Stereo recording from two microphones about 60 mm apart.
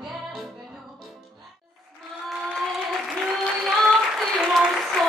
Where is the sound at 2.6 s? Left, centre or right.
Centre.